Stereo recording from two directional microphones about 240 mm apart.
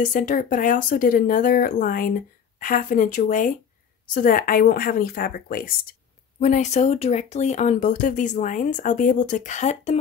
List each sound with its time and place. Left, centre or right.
0.0 s speech: left